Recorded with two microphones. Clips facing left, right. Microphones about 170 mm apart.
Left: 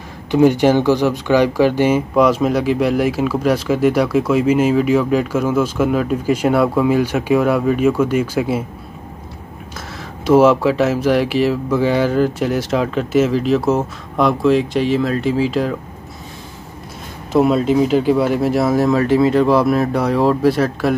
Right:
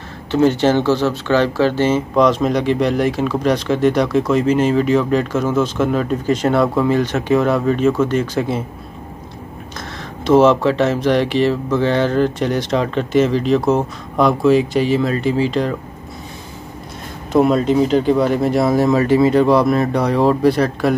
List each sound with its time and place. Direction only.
0.3 s speech: 15° left (ahead or behind)
9.8 s speech: 10° left (ahead or behind)
17.3 s speech: centre (ahead or behind)